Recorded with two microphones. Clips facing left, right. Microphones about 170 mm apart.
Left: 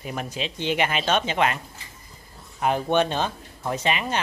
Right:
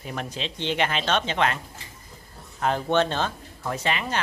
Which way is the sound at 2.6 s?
15° left (ahead or behind).